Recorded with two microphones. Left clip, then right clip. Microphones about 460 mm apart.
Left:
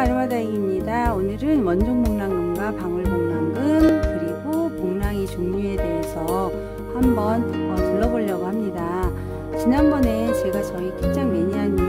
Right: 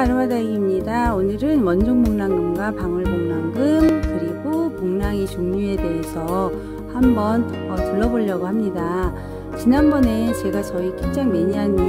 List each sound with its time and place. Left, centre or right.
0.0 s music: centre
7.0 s speech: centre
9.7 s speech: centre